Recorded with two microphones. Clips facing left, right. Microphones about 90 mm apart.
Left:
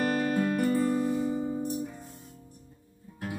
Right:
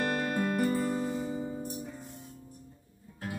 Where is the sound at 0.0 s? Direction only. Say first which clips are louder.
Left 3 dB; centre (ahead or behind).